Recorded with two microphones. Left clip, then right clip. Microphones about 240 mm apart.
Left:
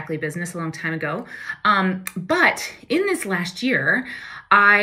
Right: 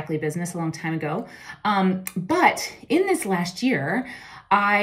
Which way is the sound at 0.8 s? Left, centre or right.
Right.